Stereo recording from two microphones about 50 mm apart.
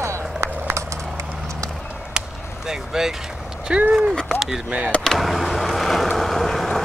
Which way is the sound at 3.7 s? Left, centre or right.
Centre.